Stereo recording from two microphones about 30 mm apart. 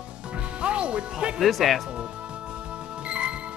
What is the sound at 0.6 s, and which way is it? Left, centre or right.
Music, right.